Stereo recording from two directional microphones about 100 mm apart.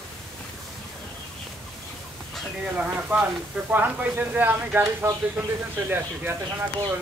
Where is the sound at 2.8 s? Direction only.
20° right (ahead or behind).